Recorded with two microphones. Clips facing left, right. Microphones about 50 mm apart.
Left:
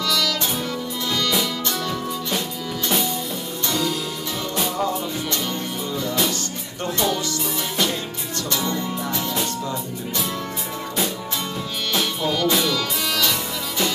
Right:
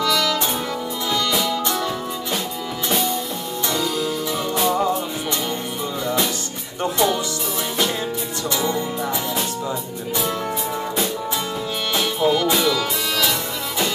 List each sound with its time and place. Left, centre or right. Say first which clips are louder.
0.0 s music: right 3 dB; right
6.8 s music: right 3 dB; centre
8.5 s music: right 3 dB; centre
11.9 s music: right 4 dB; centre